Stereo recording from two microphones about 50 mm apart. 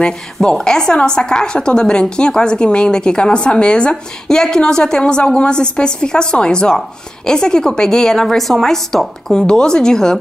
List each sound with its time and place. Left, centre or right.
0.0 s a woman's voice: centre
8.4 s speech: centre
9.5 s a woman's voice: centre